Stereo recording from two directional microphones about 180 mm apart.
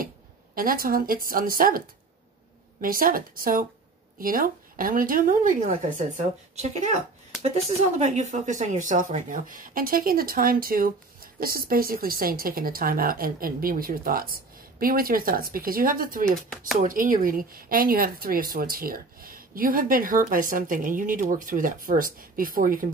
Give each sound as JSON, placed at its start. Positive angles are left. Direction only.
{"t": 0.6, "sound": "a woman's voice", "side_deg": -50}
{"t": 2.8, "sound": "a woman's voice", "side_deg": -50}
{"t": 16.3, "sound": "speech", "side_deg": 5}
{"t": 16.7, "sound": "a woman's voice", "side_deg": -50}